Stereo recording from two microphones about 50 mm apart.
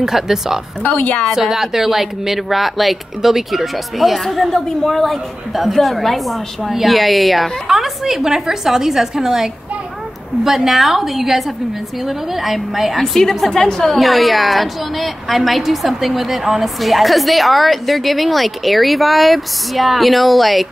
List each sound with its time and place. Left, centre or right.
0.0 s speech: centre
0.8 s a woman's voice: left
1.3 s speech: centre
13.0 s a woman's voice: centre
13.9 s speech: centre